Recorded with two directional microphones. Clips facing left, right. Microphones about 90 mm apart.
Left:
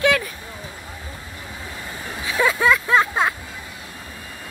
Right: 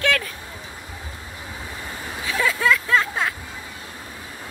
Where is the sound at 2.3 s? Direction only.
20° left (ahead or behind).